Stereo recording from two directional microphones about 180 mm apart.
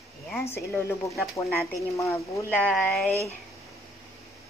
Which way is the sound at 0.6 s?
15° left (ahead or behind).